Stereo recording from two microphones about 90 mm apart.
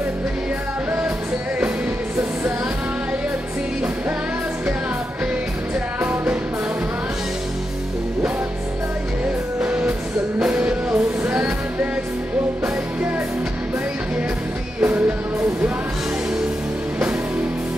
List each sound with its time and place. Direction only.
9.6 s music: 10° right (ahead or behind)
14.8 s music: 15° right (ahead or behind)